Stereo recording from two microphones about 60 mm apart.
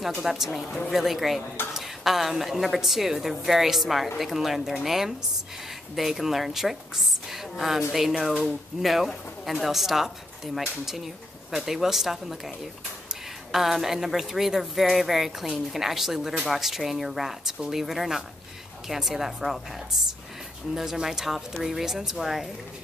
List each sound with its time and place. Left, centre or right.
0.0 s a woman's voice: centre
0.6 s a woman's voice: centre
0.9 s a woman's voice: centre